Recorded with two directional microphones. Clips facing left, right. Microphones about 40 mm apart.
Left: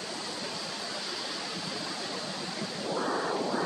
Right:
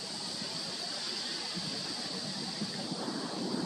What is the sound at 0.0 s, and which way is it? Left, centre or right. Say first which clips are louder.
Waterfall: left 5 dB; left.